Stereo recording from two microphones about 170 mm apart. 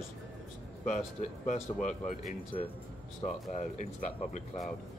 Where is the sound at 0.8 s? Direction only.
45° left (ahead or behind).